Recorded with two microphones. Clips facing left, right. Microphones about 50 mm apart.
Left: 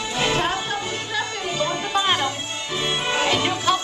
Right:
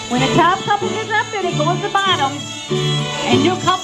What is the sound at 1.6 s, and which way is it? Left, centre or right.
Music, centre.